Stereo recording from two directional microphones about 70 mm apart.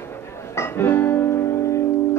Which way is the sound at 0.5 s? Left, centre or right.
Left.